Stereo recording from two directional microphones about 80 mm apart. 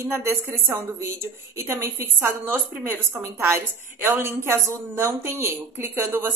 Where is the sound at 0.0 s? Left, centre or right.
Right.